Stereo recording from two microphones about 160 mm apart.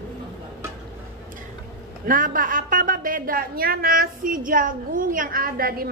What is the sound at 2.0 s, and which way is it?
A woman's voice, 55° right (ahead or behind).